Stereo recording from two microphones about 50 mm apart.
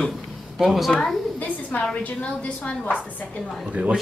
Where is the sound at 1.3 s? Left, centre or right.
Left.